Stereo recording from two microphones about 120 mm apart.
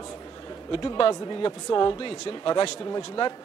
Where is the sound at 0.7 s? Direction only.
40° left (ahead or behind).